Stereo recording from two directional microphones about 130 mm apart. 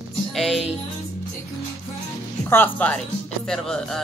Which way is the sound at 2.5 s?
15° left (ahead or behind).